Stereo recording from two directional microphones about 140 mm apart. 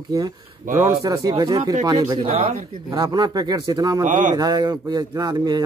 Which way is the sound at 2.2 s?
45° right (ahead or behind).